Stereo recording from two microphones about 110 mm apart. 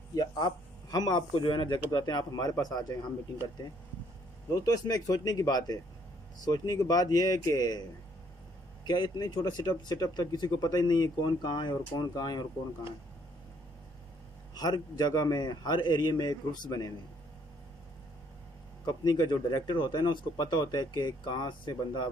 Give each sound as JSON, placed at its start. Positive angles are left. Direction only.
{"t": 0.1, "sound": "a sound", "side_deg": 40}
{"t": 0.8, "sound": "speech", "side_deg": 35}
{"t": 8.8, "sound": "speech", "side_deg": 40}
{"t": 14.5, "sound": "speech", "side_deg": 40}
{"t": 18.9, "sound": "speech", "side_deg": 40}